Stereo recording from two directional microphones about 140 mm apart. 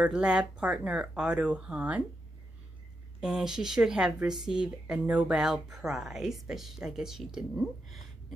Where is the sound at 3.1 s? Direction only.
5° right (ahead or behind).